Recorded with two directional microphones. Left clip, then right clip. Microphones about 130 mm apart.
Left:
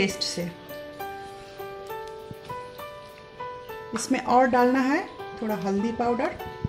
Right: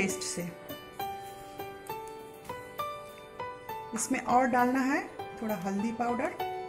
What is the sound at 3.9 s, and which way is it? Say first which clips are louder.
Speech: left 6 dB; 35° left (ahead or behind).